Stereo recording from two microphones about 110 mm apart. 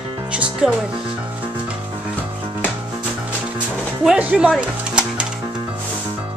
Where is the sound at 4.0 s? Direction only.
10° right (ahead or behind).